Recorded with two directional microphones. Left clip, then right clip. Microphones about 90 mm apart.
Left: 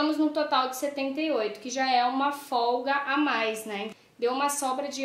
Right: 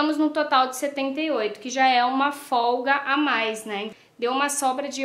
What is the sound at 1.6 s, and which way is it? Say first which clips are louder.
A woman's voice: right 6 dB; 30° right (ahead or behind).